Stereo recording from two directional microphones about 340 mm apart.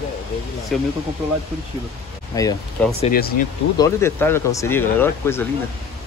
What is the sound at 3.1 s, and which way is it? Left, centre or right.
Speech, left.